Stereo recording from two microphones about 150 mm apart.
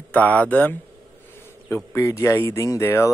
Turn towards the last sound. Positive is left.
turn(degrees=20)  # may be behind; listen again after turning